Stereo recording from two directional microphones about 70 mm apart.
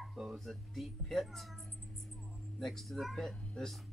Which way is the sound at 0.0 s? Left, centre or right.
Centre.